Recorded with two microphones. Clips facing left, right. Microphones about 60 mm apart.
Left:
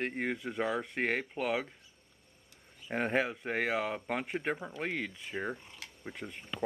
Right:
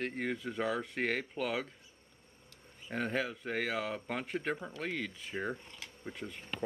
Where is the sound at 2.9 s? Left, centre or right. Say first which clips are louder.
Left 4 dB; left.